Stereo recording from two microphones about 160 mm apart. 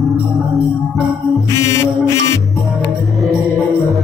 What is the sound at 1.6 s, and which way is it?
Mantra, 20° left (ahead or behind).